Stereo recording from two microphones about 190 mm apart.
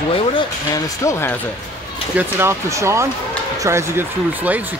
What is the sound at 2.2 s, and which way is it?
Speech, 10° right (ahead or behind).